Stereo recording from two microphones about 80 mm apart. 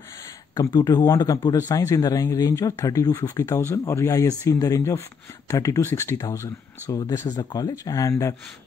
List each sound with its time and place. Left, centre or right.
0.6 s speech: left